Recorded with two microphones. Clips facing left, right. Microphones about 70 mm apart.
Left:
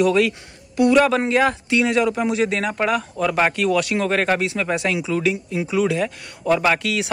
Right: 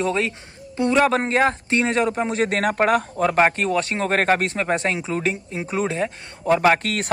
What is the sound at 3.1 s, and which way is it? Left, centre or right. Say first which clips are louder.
Speech: right 2 dB; right.